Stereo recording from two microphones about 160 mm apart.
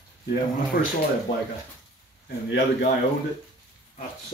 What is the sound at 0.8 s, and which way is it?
Speech, 65° left (ahead or behind).